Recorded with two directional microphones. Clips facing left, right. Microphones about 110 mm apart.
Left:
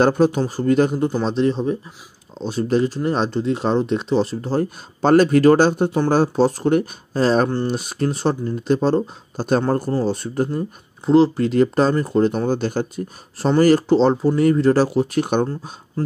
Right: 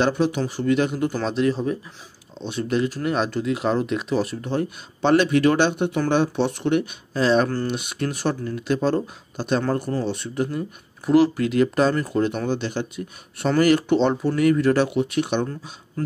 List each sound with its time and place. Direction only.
0.0 s speech: 45° left (ahead or behind)
1.0 s speech: 30° left (ahead or behind)
7.4 s speech: 25° left (ahead or behind)
7.7 s speech: 35° left (ahead or behind)
11.1 s speech: 30° left (ahead or behind); by 15.7 s 45° left (ahead or behind)